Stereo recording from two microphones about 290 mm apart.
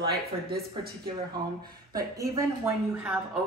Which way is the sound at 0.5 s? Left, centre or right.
Right.